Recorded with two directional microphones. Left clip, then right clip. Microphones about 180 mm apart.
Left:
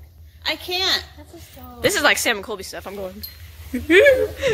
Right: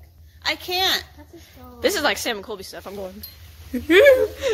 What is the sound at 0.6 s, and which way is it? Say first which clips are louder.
Speech: even; 55° right (ahead or behind).